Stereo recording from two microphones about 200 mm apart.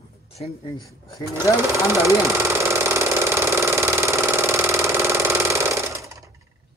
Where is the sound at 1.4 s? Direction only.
10° right (ahead or behind).